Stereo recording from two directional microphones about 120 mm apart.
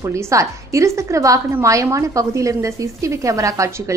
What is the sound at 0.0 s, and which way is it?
A woman's voice, 25° right (ahead or behind).